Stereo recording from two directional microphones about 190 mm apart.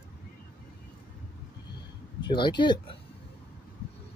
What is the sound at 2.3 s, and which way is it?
Speech, 25° left (ahead or behind).